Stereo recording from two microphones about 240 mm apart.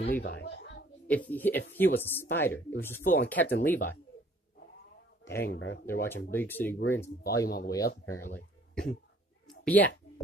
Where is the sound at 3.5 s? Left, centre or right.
Left.